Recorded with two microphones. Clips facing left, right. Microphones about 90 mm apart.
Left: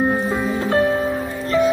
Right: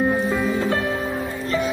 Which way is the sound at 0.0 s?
35° left (ahead or behind).